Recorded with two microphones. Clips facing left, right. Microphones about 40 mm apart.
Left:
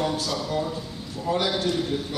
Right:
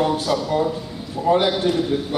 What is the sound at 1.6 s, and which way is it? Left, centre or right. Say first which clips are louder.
Speech: right 5 dB; centre.